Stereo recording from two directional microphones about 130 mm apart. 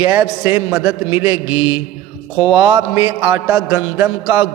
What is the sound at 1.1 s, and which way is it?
Mantra, 20° right (ahead or behind).